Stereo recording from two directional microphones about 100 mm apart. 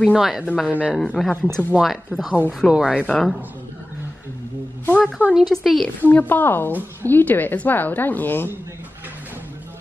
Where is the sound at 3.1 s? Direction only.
5° left (ahead or behind).